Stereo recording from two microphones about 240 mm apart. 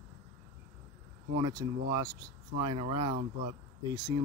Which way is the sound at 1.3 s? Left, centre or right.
Centre.